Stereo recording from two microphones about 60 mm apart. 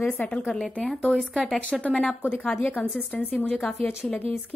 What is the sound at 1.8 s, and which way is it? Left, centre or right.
A woman's voice, left.